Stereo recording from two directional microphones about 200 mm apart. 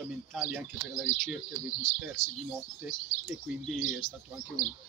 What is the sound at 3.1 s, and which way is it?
Speech, 40° left (ahead or behind).